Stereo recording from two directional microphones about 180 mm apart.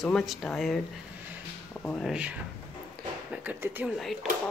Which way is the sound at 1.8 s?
Centre (ahead or behind).